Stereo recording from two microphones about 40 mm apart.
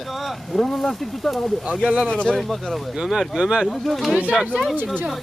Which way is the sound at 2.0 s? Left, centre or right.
Left.